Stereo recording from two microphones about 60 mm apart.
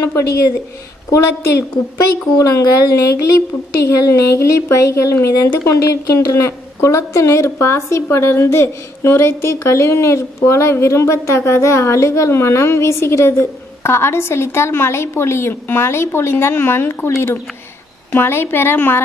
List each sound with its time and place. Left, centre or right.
1.1 s a woman's voice: left
18.1 s a woman's voice: left